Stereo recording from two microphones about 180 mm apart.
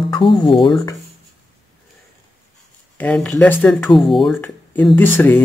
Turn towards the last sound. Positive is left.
turn(degrees=10)  # may be behind; listen again after turning